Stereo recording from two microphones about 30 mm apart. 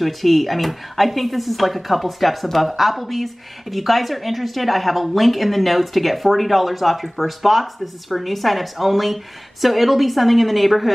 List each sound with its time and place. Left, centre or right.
0.0 s a woman's voice: centre